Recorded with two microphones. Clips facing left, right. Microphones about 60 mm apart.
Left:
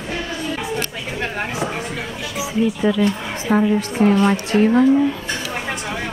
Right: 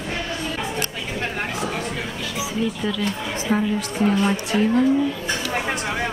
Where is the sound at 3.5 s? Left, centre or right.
Left.